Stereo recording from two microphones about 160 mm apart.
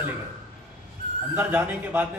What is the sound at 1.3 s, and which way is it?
Speech, 10° right (ahead or behind).